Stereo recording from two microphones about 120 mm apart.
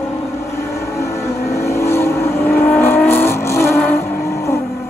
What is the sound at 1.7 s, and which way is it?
Vehicle, 20° left (ahead or behind).